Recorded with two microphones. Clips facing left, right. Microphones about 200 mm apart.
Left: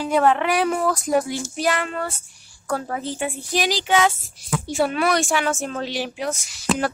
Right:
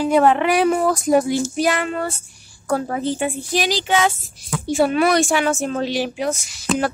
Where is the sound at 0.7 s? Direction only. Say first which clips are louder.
Right 4 dB; 20° right (ahead or behind).